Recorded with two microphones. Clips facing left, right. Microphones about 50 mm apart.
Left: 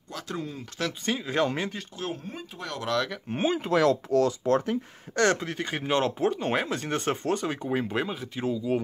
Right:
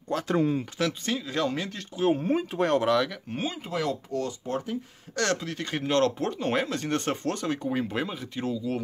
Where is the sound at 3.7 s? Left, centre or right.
Left.